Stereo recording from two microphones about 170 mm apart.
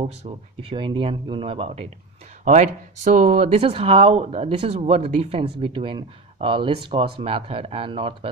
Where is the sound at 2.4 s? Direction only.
45° right (ahead or behind).